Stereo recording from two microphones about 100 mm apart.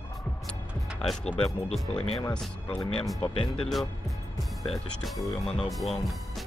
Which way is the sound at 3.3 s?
65° left (ahead or behind).